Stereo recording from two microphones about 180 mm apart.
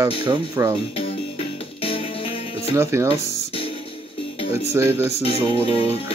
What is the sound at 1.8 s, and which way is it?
Music, 30° left (ahead or behind).